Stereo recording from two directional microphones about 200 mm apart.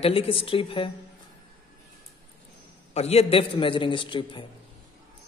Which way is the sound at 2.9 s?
30° left (ahead or behind).